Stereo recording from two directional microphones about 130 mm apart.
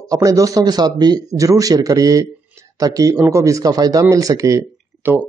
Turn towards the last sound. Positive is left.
turn(degrees=-20)  # may be behind; listen again after turning